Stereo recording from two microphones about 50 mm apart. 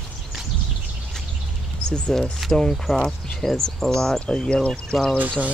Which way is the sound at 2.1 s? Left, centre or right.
Centre.